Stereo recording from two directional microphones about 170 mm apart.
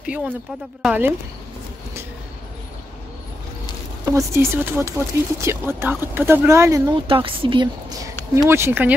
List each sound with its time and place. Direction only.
0.0 s speech: 5° right (ahead or behind)
4.0 s speech: 15° right (ahead or behind)
7.1 s a woman's voice: 30° right (ahead or behind)
8.4 s speech: 15° right (ahead or behind)